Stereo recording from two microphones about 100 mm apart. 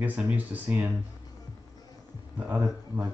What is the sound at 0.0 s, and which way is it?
Speech, 15° right (ahead or behind).